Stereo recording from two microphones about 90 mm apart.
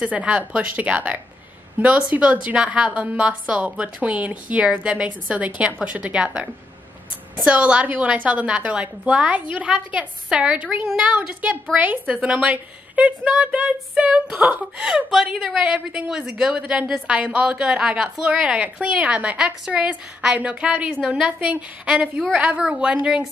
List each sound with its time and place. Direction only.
0.0 s a woman's voice: 15° right (ahead or behind)